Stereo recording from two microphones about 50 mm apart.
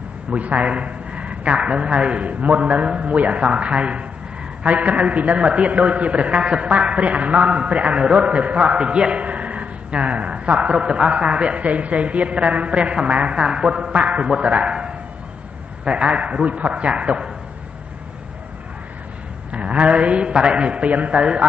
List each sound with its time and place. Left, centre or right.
0.3 s a man's voice: right
19.5 s a man's voice: right